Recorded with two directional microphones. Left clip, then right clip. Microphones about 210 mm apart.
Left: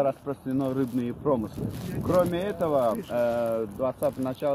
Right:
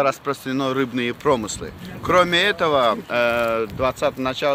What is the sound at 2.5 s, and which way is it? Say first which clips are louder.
Speech: right 7 dB; 25° right (ahead or behind).